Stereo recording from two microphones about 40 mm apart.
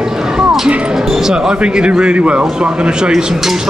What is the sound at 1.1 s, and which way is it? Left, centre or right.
Speech, centre.